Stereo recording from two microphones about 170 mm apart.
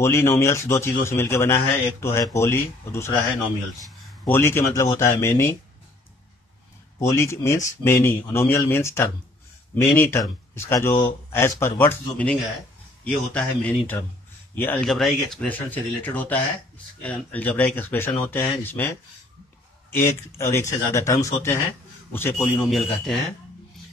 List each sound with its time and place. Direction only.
0.0 s a man's voice: 15° left (ahead or behind)
4.3 s a man's voice: 15° left (ahead or behind)
7.0 s a man's voice: 15° left (ahead or behind)
22.7 s speech: centre (ahead or behind)